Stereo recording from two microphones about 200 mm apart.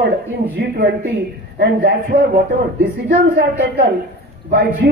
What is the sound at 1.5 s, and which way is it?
A woman's voice, 55° right (ahead or behind).